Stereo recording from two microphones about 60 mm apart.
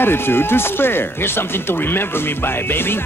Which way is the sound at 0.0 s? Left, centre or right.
Left.